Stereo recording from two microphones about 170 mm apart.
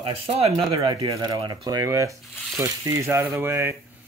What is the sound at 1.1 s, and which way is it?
Speech, 25° right (ahead or behind).